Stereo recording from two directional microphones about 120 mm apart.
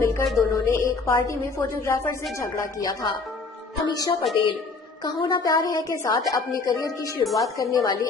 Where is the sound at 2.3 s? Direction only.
25° left (ahead or behind); by 4.5 s 40° left (ahead or behind).